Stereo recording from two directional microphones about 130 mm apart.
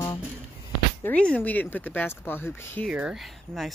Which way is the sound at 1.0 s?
10° left (ahead or behind).